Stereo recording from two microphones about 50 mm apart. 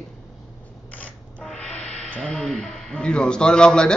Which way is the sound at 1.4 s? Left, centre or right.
Centre.